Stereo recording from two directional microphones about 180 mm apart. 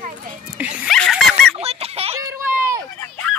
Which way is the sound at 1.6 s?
35° right (ahead or behind).